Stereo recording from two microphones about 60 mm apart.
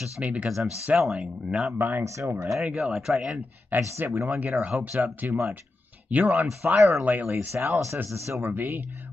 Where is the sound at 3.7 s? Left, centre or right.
Right.